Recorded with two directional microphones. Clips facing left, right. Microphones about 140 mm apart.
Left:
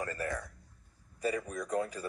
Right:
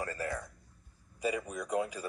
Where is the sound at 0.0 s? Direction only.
20° right (ahead or behind).